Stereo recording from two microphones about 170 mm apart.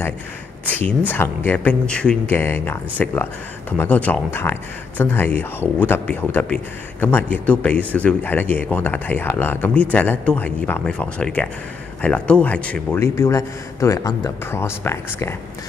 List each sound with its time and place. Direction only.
0.7 s speech: 10° left (ahead or behind)